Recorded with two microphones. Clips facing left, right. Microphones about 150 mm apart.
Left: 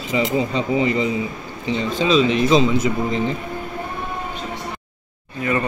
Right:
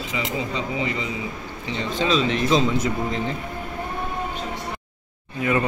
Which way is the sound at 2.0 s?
15° left (ahead or behind).